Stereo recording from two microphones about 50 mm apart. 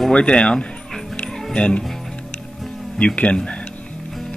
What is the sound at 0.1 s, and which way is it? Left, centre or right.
Music, left.